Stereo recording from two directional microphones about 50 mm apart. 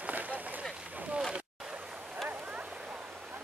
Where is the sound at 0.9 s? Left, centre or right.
Right.